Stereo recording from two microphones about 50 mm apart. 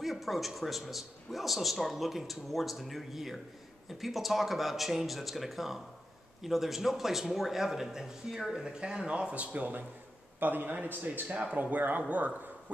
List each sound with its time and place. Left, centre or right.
0.0 s a man's voice: centre; by 12.7 s right